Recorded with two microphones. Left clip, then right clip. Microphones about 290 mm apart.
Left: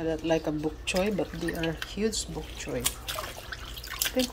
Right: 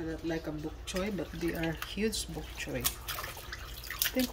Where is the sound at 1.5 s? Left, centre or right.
Centre.